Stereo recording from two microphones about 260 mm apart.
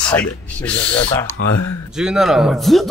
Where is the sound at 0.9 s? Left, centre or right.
Centre.